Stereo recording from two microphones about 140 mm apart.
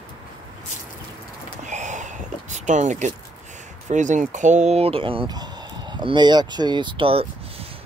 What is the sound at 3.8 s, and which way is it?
Speech, 60° right (ahead or behind).